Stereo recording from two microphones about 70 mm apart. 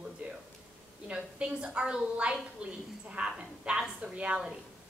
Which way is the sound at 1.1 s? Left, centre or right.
Centre.